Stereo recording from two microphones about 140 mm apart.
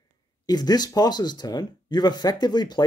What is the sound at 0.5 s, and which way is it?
Speech, 30° left (ahead or behind).